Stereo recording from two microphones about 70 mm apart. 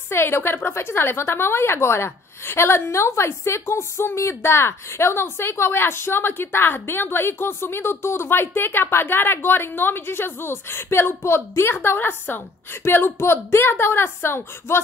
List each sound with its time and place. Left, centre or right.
0.1 s a woman's voice: left